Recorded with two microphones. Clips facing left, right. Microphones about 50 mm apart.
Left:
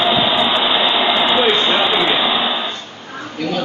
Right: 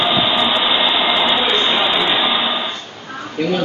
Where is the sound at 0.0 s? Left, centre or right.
Centre.